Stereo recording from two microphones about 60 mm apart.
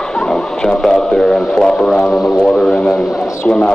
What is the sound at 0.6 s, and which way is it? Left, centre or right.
A man's voice, centre.